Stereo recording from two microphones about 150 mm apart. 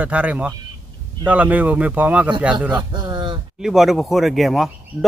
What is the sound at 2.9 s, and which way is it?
Speech, 30° right (ahead or behind).